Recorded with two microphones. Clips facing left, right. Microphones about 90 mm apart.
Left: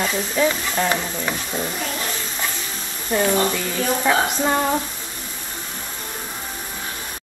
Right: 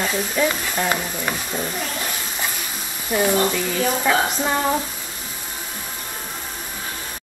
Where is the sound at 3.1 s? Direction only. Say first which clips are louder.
Even; 15° right (ahead or behind).